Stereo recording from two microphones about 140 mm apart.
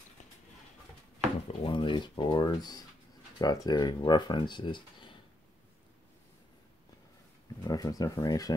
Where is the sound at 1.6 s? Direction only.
35° left (ahead or behind).